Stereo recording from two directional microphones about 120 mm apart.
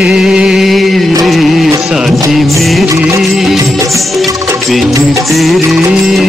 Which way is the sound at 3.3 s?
Centre (ahead or behind).